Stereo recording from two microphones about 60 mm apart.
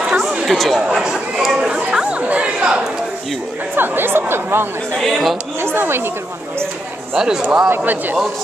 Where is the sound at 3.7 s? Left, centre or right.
Right.